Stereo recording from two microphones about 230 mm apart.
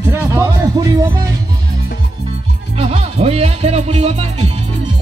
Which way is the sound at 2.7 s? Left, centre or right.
Right.